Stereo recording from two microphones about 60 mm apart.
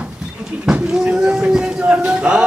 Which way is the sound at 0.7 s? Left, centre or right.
Centre.